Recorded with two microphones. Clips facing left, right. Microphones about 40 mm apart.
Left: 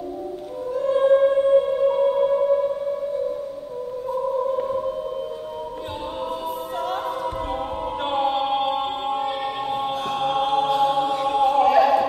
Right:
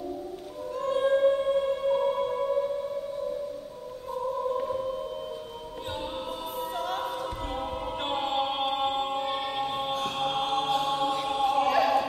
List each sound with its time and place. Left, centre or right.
0.7 s music: centre
4.6 s music: centre
8.0 s music: centre
10.1 s chant: centre
10.7 s choir: centre